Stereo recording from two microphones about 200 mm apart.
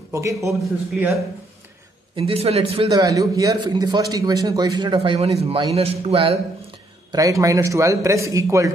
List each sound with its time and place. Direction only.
0.1 s a man's voice: 15° right (ahead or behind)
2.1 s a man's voice: 30° right (ahead or behind)
7.1 s a man's voice: 15° right (ahead or behind)